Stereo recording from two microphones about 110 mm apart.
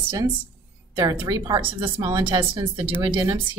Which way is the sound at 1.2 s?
30° right (ahead or behind).